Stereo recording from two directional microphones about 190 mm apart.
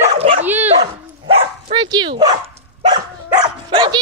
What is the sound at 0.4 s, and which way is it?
Dog, 10° right (ahead or behind).